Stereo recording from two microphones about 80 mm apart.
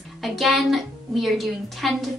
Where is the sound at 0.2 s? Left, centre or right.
Centre.